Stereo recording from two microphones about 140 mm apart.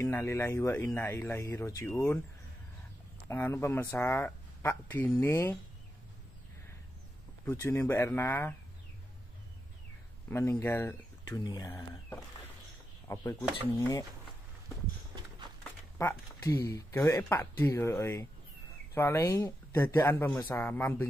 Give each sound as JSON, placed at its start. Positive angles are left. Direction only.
{"t": 0.0, "sound": "speech", "side_deg": 20}
{"t": 3.3, "sound": "speech", "side_deg": 15}
{"t": 7.4, "sound": "speech", "side_deg": 15}
{"t": 10.3, "sound": "speech", "side_deg": 15}
{"t": 13.1, "sound": "speech", "side_deg": 20}
{"t": 16.0, "sound": "speech", "side_deg": 20}